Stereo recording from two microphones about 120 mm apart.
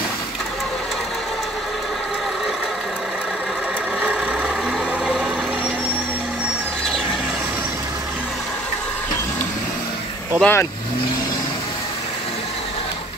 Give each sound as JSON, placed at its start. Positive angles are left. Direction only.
{"t": 4.0, "sound": "vehicle", "side_deg": -10}
{"t": 10.4, "sound": "speech", "side_deg": 20}